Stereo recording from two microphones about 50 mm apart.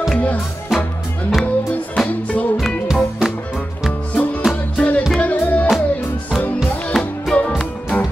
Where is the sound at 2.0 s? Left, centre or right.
Left.